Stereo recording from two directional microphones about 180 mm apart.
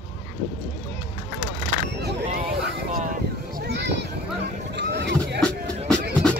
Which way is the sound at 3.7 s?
70° right (ahead or behind).